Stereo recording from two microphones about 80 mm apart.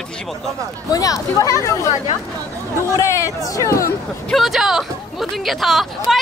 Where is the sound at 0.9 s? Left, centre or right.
Left.